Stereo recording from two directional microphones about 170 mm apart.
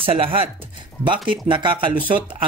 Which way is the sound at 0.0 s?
35° right (ahead or behind).